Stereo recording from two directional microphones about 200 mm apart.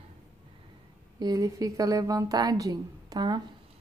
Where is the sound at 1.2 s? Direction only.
20° right (ahead or behind).